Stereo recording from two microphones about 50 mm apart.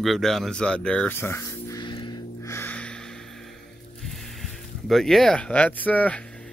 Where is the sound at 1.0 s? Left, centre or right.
Left.